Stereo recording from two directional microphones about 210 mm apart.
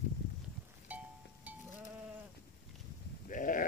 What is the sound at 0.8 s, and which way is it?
Music, 5° right (ahead or behind).